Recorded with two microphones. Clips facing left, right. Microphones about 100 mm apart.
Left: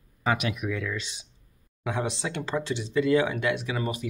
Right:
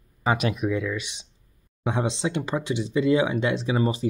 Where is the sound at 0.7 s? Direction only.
15° right (ahead or behind).